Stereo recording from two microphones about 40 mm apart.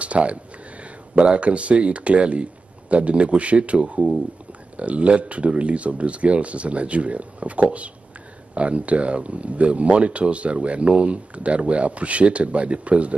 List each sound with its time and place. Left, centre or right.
0.0 s speech: right